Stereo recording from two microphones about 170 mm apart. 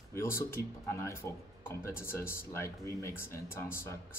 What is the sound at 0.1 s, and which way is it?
Speech, 15° left (ahead or behind).